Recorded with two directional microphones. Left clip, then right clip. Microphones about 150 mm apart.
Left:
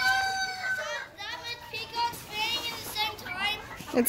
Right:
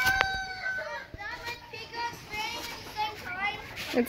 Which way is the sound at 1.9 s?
30° right (ahead or behind).